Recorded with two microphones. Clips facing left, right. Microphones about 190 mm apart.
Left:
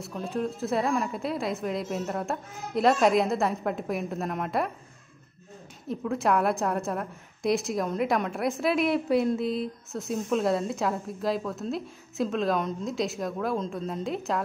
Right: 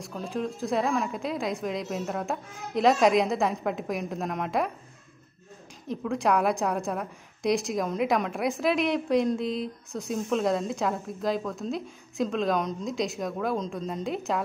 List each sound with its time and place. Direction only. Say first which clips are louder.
0.0 s a woman's voice: left 1 dB; centre (ahead or behind)
5.9 s a woman's voice: even; centre (ahead or behind)